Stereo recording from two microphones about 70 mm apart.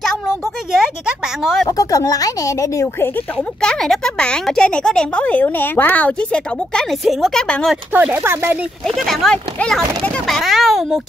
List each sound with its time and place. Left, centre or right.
1.4 s a child's voice: centre
1.7 s speech: left
3.6 s a child's voice: centre
7.9 s speech: right
8.8 s a child's voice: centre
10.2 s a child's voice: centre